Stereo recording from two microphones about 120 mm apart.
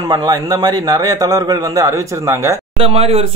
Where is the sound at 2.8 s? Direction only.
55° right (ahead or behind).